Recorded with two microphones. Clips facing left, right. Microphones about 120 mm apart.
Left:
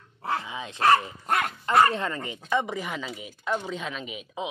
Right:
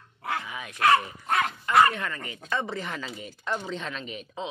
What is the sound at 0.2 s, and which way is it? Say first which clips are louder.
Dog: left 2 dB; 30° left (ahead or behind).